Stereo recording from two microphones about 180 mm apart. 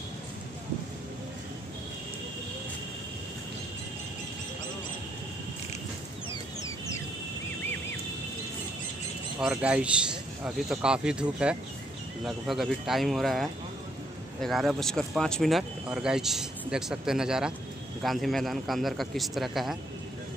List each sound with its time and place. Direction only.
9.4 s speech: 5° right (ahead or behind)